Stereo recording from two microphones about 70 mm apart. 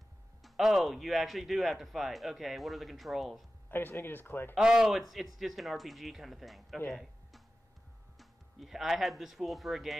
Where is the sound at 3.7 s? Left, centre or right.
Left.